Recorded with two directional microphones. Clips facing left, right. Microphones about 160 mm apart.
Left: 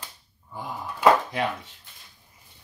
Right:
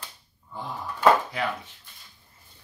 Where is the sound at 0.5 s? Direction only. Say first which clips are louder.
Even; 10° left (ahead or behind).